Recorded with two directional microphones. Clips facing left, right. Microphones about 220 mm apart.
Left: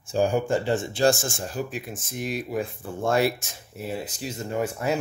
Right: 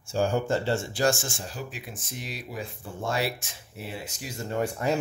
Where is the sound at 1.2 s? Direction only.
50° left (ahead or behind).